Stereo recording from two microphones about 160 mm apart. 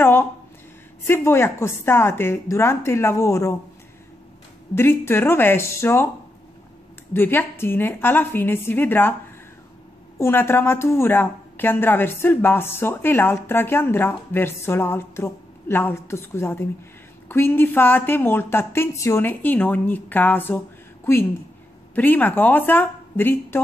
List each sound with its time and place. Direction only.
0.0 s a sound: 15° left (ahead or behind)
1.0 s speech: 15° left (ahead or behind)
4.7 s speech: 15° left (ahead or behind)
7.2 s speech: 15° left (ahead or behind)
10.1 s speech: 15° left (ahead or behind)